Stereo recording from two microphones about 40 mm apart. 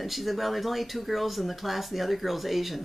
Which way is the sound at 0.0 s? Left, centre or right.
Centre.